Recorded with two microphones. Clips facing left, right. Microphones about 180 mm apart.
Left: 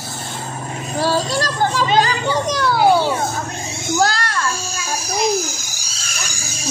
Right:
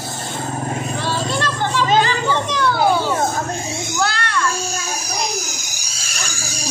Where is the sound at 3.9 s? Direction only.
40° left (ahead or behind).